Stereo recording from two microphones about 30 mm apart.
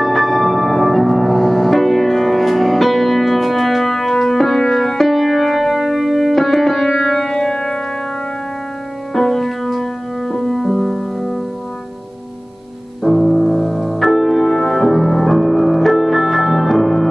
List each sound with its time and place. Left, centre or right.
0.0 s music: centre
9.1 s music: centre
13.0 s music: centre